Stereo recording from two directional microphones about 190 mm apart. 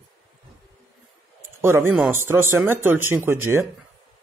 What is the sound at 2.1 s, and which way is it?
Speech, 10° right (ahead or behind).